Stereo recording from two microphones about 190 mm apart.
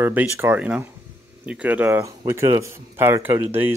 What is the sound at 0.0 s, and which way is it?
Speech, 10° right (ahead or behind).